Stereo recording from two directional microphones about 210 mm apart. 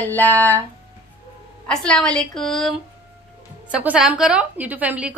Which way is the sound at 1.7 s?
5° left (ahead or behind).